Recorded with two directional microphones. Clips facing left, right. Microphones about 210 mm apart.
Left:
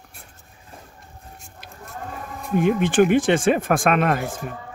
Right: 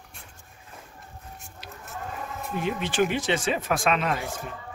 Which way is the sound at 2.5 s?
50° left (ahead or behind).